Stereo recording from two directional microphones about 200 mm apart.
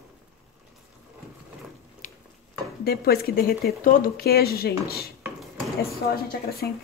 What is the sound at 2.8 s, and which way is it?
Speech, 50° left (ahead or behind).